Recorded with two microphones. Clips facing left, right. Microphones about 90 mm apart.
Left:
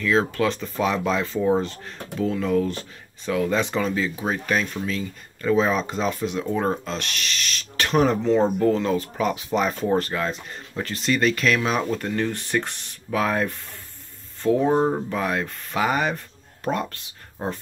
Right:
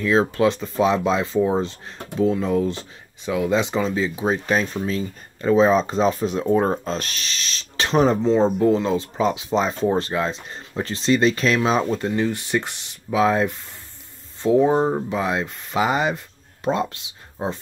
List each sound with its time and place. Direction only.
0.0 s speech: 25° right (ahead or behind)
4.5 s speech: 30° right (ahead or behind)
14.6 s speech: 5° right (ahead or behind)